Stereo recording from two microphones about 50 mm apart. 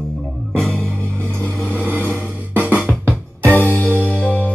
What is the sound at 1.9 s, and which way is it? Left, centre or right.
Music, right.